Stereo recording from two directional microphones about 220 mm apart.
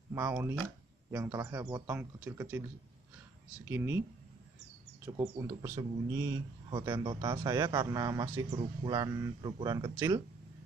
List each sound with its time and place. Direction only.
0.1 s speech: 10° right (ahead or behind)
5.0 s speech: 15° right (ahead or behind)